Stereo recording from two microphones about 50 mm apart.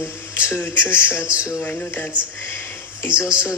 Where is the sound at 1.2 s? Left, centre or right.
Right.